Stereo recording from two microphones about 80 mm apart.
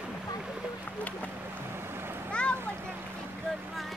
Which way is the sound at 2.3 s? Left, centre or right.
Centre.